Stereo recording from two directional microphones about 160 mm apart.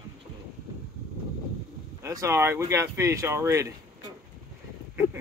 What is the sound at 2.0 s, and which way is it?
Speech, 20° right (ahead or behind).